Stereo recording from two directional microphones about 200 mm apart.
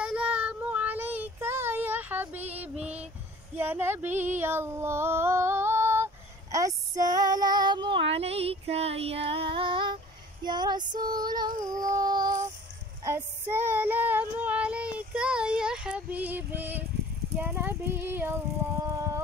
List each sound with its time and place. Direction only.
0.0 s child singing: 5° right (ahead or behind)
2.8 s a sound: 5° right (ahead or behind)
3.5 s speech: 10° right (ahead or behind)
4.2 s female singing: 10° right (ahead or behind)
17.4 s speech: 10° right (ahead or behind)
18.9 s a sound: 15° right (ahead or behind)